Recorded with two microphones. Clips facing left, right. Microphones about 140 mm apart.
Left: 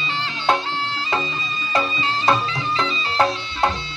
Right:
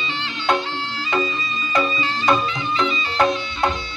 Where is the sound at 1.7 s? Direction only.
30° left (ahead or behind).